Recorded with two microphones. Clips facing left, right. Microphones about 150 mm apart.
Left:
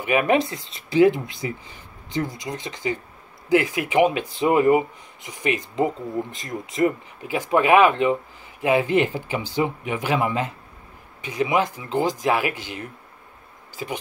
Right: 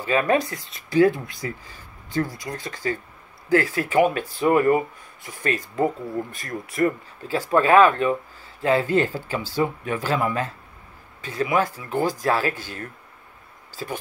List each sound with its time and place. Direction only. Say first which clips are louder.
0.0 s speech: left 1 dB; 20° left (ahead or behind)